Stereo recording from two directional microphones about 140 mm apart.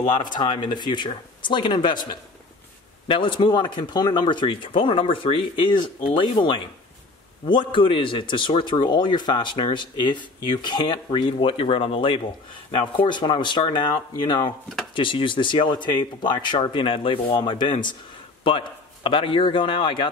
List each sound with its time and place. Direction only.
0.2 s a man's voice: 30° left (ahead or behind)